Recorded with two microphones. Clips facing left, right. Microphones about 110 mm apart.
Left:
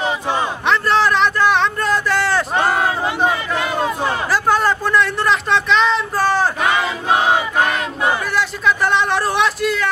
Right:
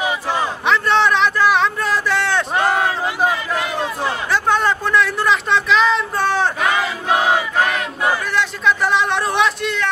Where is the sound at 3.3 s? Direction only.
30° left (ahead or behind).